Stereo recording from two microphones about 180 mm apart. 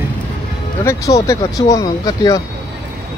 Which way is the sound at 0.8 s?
15° left (ahead or behind).